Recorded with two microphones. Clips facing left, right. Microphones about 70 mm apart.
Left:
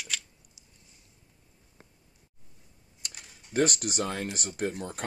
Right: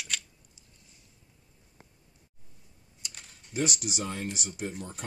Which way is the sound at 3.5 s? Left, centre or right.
Left.